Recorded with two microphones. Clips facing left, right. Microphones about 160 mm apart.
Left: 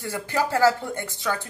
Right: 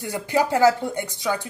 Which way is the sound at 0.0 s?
15° right (ahead or behind).